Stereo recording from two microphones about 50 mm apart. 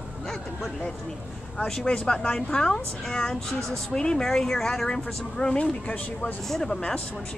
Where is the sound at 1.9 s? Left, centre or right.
Centre.